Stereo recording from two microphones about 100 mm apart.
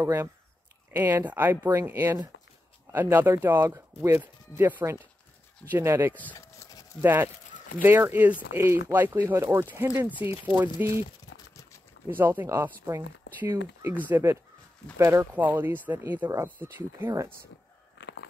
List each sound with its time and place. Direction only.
0.0 s speech: 25° right (ahead or behind)
12.1 s speech: 20° right (ahead or behind)
15.3 s speech: 20° right (ahead or behind)